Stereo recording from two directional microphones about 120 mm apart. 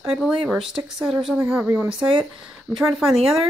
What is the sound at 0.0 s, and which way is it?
A woman's voice, centre (ahead or behind).